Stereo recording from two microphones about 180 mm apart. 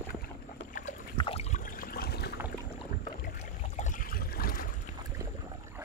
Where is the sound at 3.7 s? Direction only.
45° left (ahead or behind).